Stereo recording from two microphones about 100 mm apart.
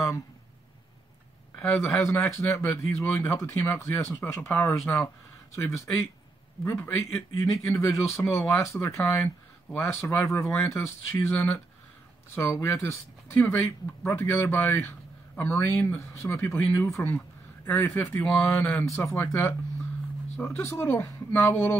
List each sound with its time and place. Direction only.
1.6 s speech: 20° left (ahead or behind)